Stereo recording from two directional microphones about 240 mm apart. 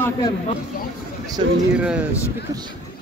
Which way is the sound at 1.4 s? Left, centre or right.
Right.